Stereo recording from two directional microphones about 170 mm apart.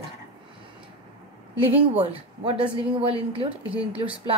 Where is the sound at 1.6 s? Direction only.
35° right (ahead or behind).